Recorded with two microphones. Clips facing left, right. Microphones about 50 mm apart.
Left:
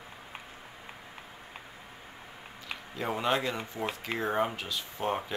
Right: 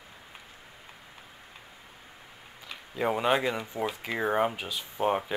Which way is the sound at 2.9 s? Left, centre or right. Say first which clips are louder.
Right 4 dB; centre.